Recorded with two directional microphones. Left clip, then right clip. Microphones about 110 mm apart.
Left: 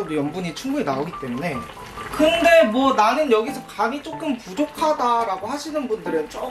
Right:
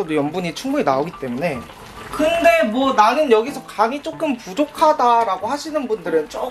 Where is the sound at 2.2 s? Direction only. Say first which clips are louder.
Even; 15° right (ahead or behind).